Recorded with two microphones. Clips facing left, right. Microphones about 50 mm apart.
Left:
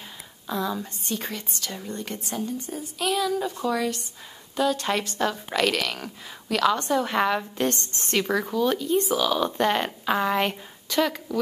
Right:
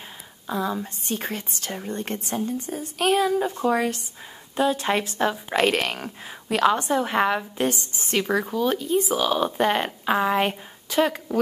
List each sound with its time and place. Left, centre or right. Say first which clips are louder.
0.5 s a woman's voice: right 2 dB; centre
1.0 s a woman's voice: right 3 dB; right
2.0 s a woman's voice: right 3 dB; right
4.6 s a woman's voice: right 2 dB; right
6.8 s a woman's voice: right 1 dB; centre
9.2 s a woman's voice: right 1 dB; centre